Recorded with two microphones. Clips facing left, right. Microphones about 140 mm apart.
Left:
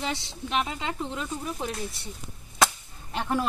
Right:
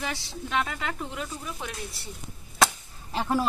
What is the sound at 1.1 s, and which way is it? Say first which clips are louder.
Speech: left 3 dB; 35° left (ahead or behind).